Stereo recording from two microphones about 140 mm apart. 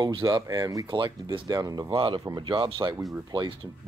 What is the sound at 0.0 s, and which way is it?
Speech, 30° right (ahead or behind).